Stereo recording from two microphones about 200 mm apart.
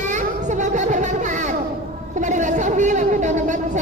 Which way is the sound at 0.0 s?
35° right (ahead or behind).